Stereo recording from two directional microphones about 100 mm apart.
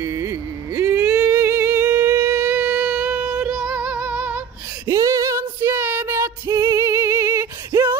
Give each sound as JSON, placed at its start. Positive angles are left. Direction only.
{"t": 0.0, "sound": "a sound", "side_deg": -30}
{"t": 0.8, "sound": "a sound", "side_deg": -15}
{"t": 1.2, "sound": "humming", "side_deg": -25}
{"t": 2.4, "sound": "music", "side_deg": -10}
{"t": 4.8, "sound": "female singing", "side_deg": -30}
{"t": 6.1, "sound": "music", "side_deg": -25}
{"t": 6.6, "sound": "humming", "side_deg": -30}